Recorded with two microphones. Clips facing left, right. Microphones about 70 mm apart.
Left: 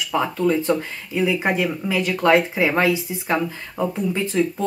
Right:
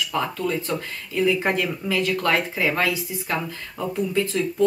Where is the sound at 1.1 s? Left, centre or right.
Centre.